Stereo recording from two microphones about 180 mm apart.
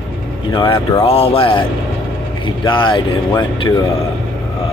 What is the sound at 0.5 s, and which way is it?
A man's voice, 30° left (ahead or behind).